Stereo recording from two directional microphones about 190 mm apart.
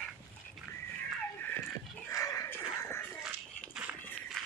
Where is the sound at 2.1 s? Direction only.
15° left (ahead or behind).